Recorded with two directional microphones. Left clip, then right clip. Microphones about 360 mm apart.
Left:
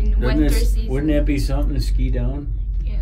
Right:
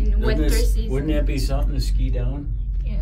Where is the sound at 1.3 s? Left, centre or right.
Left.